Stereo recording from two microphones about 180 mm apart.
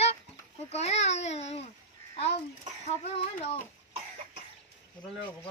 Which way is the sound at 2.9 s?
35° left (ahead or behind).